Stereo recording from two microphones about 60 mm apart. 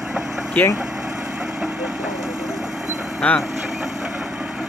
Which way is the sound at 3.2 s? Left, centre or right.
Left.